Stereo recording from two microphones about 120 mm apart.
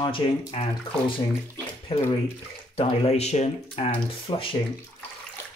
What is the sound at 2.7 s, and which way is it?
Speech, 55° left (ahead or behind).